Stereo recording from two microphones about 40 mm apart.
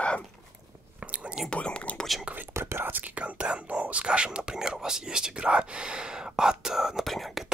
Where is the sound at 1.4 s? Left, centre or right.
Left.